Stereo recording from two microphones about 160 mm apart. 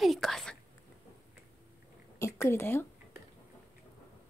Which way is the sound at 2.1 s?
20° left (ahead or behind).